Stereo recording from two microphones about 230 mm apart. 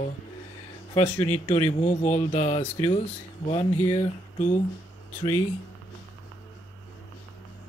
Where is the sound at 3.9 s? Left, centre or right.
Left.